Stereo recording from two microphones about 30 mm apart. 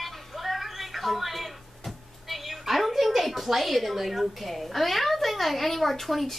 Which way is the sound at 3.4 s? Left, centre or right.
Centre.